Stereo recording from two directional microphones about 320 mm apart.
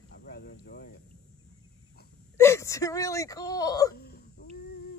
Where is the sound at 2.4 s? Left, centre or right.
Centre.